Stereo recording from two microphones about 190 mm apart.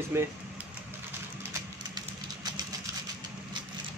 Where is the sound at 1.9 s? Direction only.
20° right (ahead or behind).